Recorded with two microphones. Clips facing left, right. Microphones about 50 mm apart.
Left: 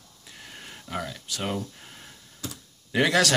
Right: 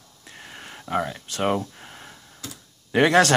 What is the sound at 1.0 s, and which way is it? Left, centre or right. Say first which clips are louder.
Speech: right 7 dB; right.